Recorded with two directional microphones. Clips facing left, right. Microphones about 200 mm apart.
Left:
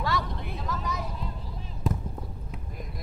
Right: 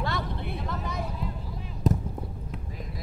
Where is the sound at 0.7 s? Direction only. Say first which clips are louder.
Left 3 dB; 55° right (ahead or behind).